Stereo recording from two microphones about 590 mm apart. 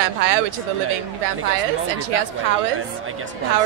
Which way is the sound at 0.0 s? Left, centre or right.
Right.